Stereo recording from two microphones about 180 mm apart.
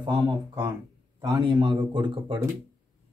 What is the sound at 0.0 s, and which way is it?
A man's voice, 25° right (ahead or behind).